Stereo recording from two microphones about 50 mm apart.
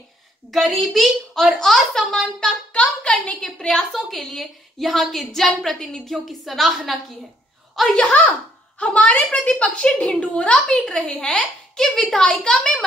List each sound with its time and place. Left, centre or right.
0.5 s a woman's voice: centre
8.7 s a woman's voice: left
12.4 s a child's voice: centre